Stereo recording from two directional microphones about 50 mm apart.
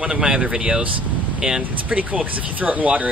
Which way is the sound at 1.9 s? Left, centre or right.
Right.